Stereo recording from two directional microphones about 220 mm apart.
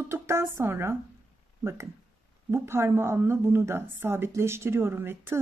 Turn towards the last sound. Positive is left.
turn(degrees=-10)  # may be behind; listen again after turning